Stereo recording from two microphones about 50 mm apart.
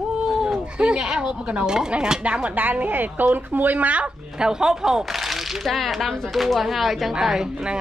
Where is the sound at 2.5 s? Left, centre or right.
Right.